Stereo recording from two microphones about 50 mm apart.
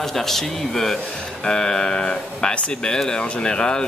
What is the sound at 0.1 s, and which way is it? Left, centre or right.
Speech, centre.